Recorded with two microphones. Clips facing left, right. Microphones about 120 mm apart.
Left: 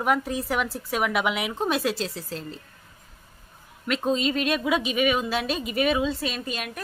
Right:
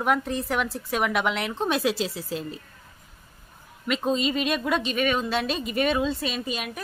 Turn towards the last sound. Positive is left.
turn(degrees=0)  # may be behind; listen again after turning